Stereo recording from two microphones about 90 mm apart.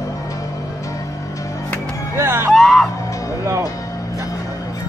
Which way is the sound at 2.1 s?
25° right (ahead or behind).